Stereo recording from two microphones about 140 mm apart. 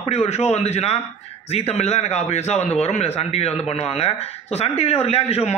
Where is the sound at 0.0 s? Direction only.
50° left (ahead or behind).